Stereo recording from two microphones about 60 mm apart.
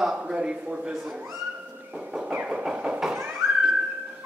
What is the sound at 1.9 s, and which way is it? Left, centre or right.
Music, centre.